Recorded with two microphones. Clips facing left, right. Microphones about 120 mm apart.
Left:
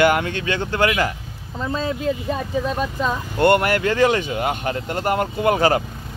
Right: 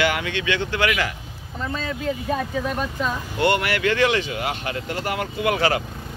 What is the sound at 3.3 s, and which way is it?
Speech, 50° left (ahead or behind).